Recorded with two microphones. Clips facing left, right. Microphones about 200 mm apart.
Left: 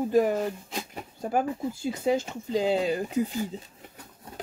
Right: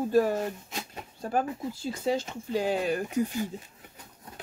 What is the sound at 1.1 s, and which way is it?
Speech, 25° left (ahead or behind).